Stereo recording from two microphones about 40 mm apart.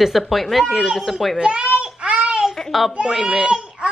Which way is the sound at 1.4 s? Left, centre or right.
Right.